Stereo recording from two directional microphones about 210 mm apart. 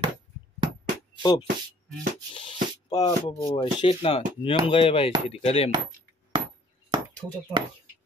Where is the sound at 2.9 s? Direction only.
15° left (ahead or behind).